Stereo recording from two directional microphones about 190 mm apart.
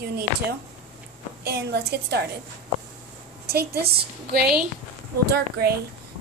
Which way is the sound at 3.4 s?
55° right (ahead or behind).